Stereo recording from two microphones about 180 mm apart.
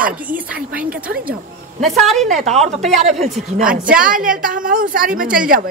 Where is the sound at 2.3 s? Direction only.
40° right (ahead or behind).